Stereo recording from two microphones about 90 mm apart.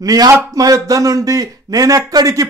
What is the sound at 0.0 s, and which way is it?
Speech, 40° right (ahead or behind).